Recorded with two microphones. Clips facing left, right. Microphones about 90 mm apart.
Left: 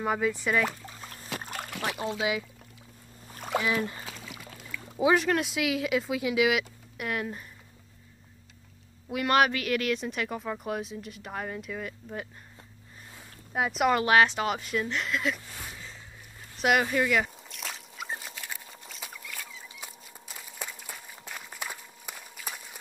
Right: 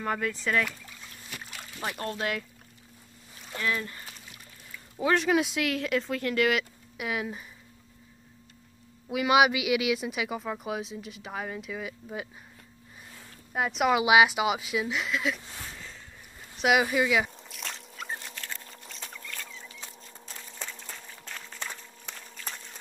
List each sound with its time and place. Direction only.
0.0 s speech: 10° left (ahead or behind)
0.7 s a sound: 35° left (ahead or behind)
1.7 s a sound: 70° left (ahead or behind)
2.1 s speech: 5° left (ahead or behind)
3.6 s speech: 20° left (ahead or behind)
4.2 s pour: 90° left
5.1 s speech: centre (ahead or behind)
9.1 s speech: 5° right (ahead or behind)
13.5 s speech: centre (ahead or behind)
16.5 s speech: centre (ahead or behind)
16.8 s a sound: 5° right (ahead or behind); by 22.8 s 10° left (ahead or behind)